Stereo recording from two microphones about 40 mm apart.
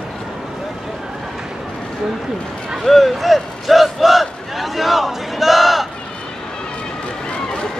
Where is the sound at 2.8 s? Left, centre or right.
Centre.